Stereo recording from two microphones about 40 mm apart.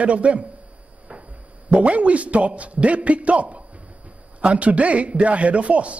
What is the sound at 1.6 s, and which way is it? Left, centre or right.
A woman's voice, right.